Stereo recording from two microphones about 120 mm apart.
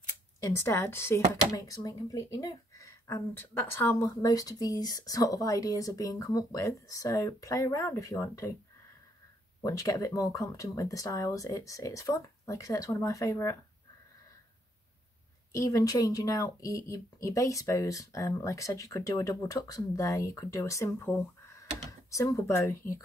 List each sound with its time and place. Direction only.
0.4 s speech: 25° left (ahead or behind)
9.6 s speech: 25° left (ahead or behind)
15.5 s speech: 25° left (ahead or behind)
22.1 s speech: 25° left (ahead or behind)